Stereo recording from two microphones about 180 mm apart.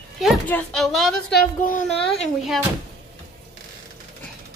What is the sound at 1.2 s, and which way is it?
Speech, 55° left (ahead or behind).